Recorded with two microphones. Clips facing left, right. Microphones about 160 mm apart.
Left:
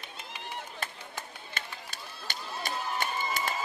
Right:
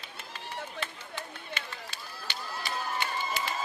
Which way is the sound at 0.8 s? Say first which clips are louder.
Right 1 dB; 45° left (ahead or behind).